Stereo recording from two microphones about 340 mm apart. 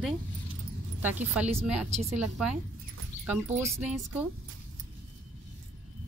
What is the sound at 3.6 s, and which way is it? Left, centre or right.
Speech, centre.